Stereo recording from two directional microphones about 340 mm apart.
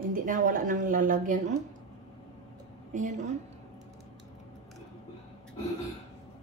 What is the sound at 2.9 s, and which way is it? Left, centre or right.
Speech, right.